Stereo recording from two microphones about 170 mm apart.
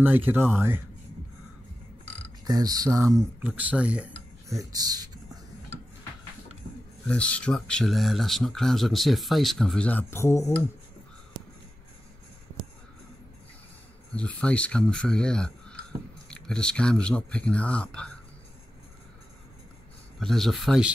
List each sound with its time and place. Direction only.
0.0 s speech: 10° right (ahead or behind)
2.4 s speech: 20° right (ahead or behind); by 4.1 s 5° right (ahead or behind)
4.5 s speech: 20° right (ahead or behind)
7.1 s speech: 5° left (ahead or behind)
14.1 s speech: 5° left (ahead or behind)
20.2 s speech: centre (ahead or behind)